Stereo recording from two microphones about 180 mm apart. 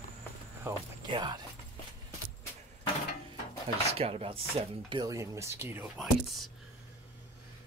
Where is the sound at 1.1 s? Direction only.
25° right (ahead or behind).